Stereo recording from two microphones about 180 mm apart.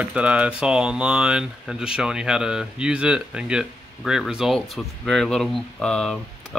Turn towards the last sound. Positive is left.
turn(degrees=5)  # may be behind; listen again after turning